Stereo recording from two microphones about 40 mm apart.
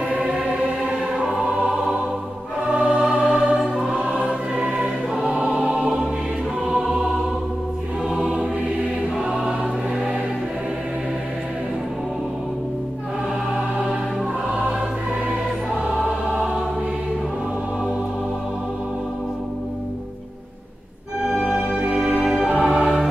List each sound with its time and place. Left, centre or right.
0.1 s music: right
2.7 s music: right
3.8 s music: right
5.3 s choir: right
8.1 s choir: right
16.3 s choir: right
21.2 s music: centre
21.8 s music: right
22.2 s music: centre